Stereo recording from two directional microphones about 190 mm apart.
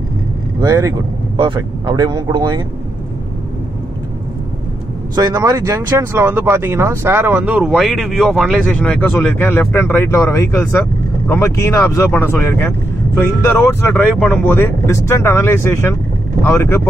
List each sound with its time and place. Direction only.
0.6 s speech: 20° right (ahead or behind)
5.1 s speech: 20° right (ahead or behind); by 16.8 s 15° left (ahead or behind)